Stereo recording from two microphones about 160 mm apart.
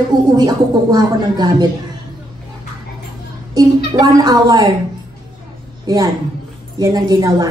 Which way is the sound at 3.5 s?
25° right (ahead or behind).